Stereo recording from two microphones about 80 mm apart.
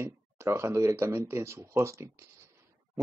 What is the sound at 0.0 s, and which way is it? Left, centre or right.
Speech, right.